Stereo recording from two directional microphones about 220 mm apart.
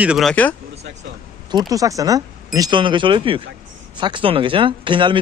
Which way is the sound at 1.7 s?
15° right (ahead or behind).